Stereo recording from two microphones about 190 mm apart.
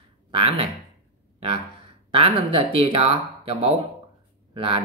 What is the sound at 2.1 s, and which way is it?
Speech, 30° right (ahead or behind).